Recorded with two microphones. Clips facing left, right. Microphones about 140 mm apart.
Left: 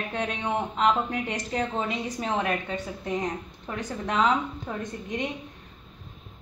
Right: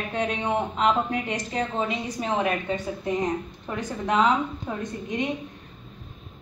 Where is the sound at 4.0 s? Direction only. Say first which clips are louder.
Right 3 dB; 5° right (ahead or behind).